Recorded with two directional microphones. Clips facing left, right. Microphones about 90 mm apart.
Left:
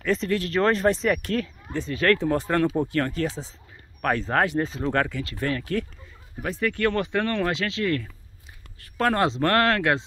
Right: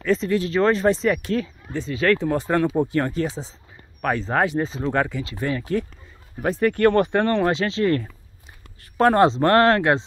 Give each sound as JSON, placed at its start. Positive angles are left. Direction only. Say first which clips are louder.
{"t": 0.0, "sound": "speech", "louder": "right 3 dB", "side_deg": 0}
{"t": 4.2, "sound": "speech", "louder": "right 2 dB", "side_deg": -15}
{"t": 6.4, "sound": "speech", "louder": "right 6 dB", "side_deg": -40}